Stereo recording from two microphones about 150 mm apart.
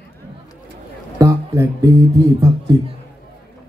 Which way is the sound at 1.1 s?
20° right (ahead or behind).